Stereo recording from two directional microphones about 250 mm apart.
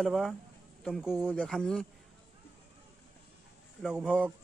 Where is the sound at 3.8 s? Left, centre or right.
Centre.